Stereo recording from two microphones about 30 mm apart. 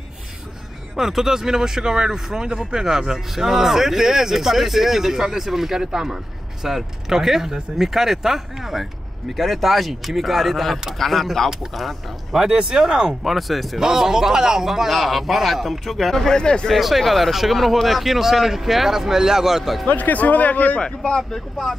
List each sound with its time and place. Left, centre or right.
0.9 s speech: centre
2.0 s speech: centre
5.8 s speech: right
6.6 s speech: centre
9.4 s a man's voice: centre
12.4 s speech: right
13.2 s a man's voice: centre
13.7 s a man's voice: centre
16.2 s speech: left
17.0 s a man's voice: centre
19.6 s a man's voice: centre
19.9 s a man's voice: left
20.8 s speech: left
21.3 s speech: centre